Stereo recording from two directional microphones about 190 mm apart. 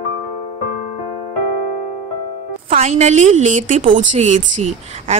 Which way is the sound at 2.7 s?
35° right (ahead or behind).